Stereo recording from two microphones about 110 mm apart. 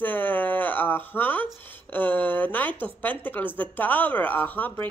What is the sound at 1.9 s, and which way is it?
Speech, 15° left (ahead or behind).